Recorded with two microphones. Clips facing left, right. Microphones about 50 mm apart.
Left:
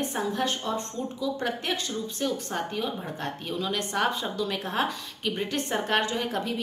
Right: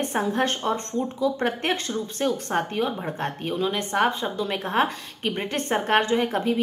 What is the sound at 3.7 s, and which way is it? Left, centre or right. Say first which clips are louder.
A woman's voice: right 3 dB; right.